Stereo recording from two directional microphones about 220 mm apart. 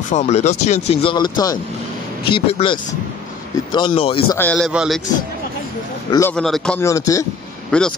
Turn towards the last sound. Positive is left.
turn(degrees=5)  # may be behind; listen again after turning